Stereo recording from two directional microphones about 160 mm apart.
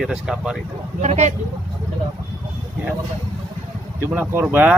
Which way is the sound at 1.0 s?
45° right (ahead or behind).